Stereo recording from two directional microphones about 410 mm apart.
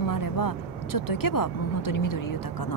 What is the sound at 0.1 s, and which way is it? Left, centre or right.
A woman's voice, left.